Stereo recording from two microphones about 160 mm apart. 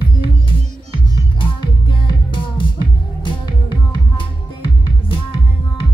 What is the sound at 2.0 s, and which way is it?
Music, 30° left (ahead or behind).